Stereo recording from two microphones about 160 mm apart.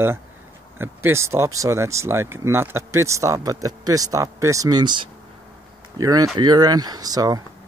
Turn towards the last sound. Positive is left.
turn(degrees=-25)  # may be behind; listen again after turning